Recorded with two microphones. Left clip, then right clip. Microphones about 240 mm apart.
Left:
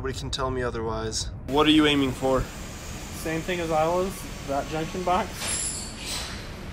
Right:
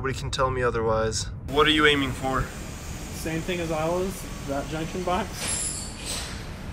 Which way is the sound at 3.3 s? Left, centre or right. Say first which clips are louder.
Left 2 dB; left.